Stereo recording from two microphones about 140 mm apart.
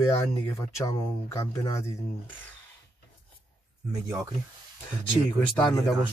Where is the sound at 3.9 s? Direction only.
25° right (ahead or behind).